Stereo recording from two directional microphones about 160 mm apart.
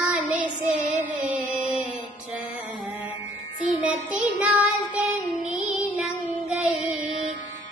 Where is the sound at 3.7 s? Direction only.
10° right (ahead or behind).